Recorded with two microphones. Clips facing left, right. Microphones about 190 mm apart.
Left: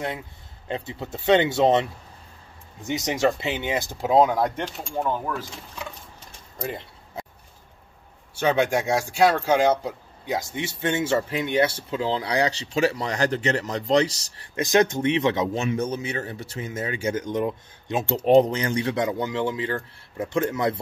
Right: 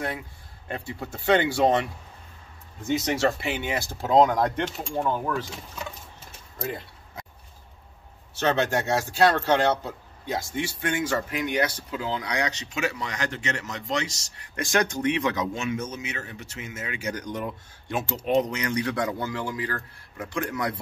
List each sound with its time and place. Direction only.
0.7 s speech: 20° left (ahead or behind)
2.9 s speech: 15° left (ahead or behind)
6.6 s a sound: 20° left (ahead or behind)
8.4 s speech: 10° left (ahead or behind); by 14.5 s 35° left (ahead or behind)
14.5 s speech: 20° left (ahead or behind)
17.1 s speech: 20° left (ahead or behind)
18.1 s speech: 35° left (ahead or behind)